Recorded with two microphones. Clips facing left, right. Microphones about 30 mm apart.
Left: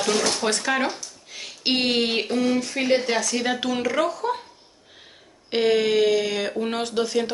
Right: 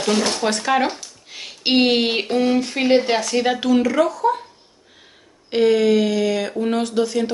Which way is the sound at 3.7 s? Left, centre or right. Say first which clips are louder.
Right 6 dB; centre.